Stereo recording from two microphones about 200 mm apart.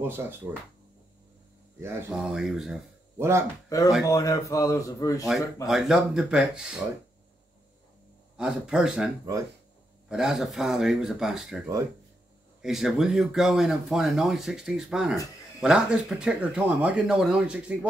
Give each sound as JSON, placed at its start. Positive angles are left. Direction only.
{"t": 0.0, "sound": "speech", "side_deg": -10}
{"t": 1.8, "sound": "speech", "side_deg": -10}
{"t": 3.6, "sound": "a man's voice", "side_deg": 15}
{"t": 5.7, "sound": "speech", "side_deg": 0}
{"t": 8.4, "sound": "speech", "side_deg": -5}